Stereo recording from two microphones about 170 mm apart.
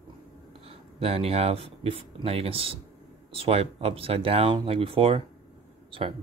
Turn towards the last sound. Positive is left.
turn(degrees=-30)  # may be behind; listen again after turning